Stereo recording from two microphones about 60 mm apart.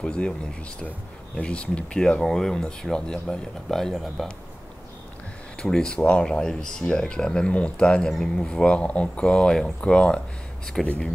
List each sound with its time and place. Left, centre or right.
0.0 s speech: centre
1.3 s speech: centre
5.6 s speech: centre
10.8 s speech: centre